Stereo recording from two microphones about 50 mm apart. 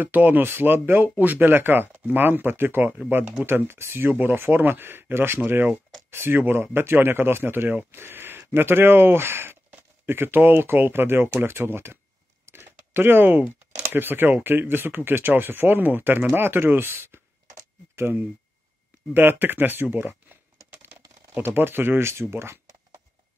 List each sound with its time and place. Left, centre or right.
0.0 s speech: right
12.4 s a sound: right
13.9 s speech: right
19.1 s speech: right